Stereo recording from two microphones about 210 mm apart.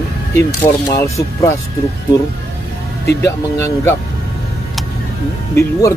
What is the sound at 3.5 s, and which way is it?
Speech, 10° left (ahead or behind).